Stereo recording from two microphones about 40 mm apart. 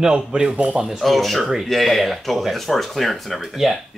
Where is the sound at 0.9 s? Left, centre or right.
Centre.